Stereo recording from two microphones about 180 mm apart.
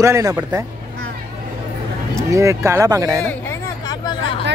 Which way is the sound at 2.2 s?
15° right (ahead or behind).